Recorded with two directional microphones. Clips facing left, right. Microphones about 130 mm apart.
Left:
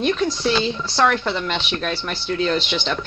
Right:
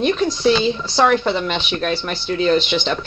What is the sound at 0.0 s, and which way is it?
Speech, 5° right (ahead or behind).